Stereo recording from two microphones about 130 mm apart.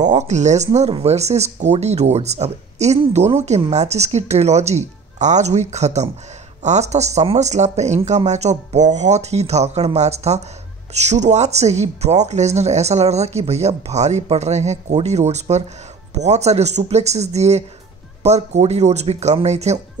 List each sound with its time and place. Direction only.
0.0 s speech: 65° right (ahead or behind)